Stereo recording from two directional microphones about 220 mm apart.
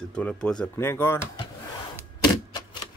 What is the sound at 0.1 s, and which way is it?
Speech, 5° left (ahead or behind).